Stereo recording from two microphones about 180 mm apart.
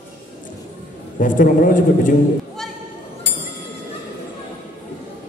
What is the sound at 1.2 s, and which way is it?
Speech, 50° left (ahead or behind).